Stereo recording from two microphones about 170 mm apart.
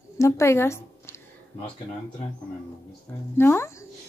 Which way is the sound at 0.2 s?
15° left (ahead or behind).